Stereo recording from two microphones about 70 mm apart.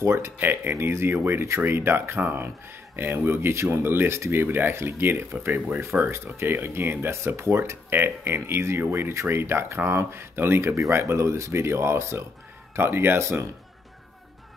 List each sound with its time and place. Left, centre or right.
0.0 s speech: right